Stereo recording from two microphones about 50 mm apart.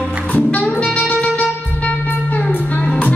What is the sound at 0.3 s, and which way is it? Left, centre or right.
Music, left.